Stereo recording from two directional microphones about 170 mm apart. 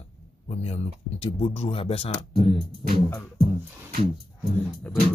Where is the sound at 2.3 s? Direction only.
30° right (ahead or behind).